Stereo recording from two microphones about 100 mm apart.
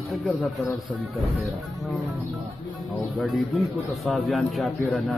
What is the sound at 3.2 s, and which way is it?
Speech, centre (ahead or behind).